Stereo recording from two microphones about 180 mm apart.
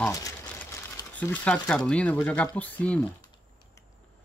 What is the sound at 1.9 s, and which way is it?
Speech, 5° left (ahead or behind).